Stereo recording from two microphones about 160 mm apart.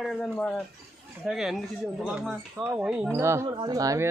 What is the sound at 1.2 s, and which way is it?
Speech, centre (ahead or behind).